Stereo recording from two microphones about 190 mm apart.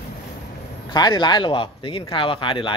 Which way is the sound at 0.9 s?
20° left (ahead or behind).